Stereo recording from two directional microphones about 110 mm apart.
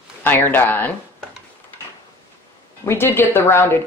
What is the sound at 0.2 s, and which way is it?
Speech, 20° left (ahead or behind).